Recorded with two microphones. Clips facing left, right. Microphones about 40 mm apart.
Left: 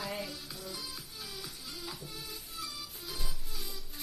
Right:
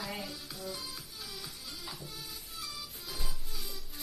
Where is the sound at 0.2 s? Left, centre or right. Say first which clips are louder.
Even; centre.